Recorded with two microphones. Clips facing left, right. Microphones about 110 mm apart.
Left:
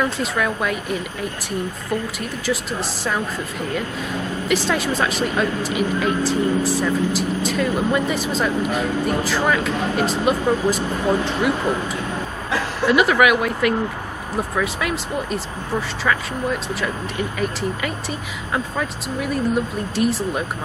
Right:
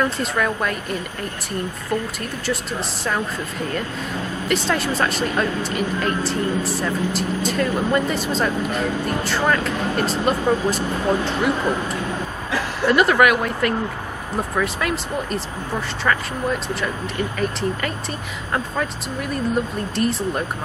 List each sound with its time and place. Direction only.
0.0 s speech: centre (ahead or behind)
2.4 s speech: centre (ahead or behind)
4.5 s speech: centre (ahead or behind)
17.4 s speech: 5° left (ahead or behind)
20.0 s speech: 5° left (ahead or behind)